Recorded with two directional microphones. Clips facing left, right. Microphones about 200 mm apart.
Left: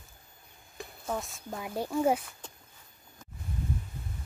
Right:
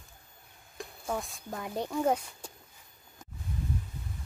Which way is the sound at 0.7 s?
Centre (ahead or behind).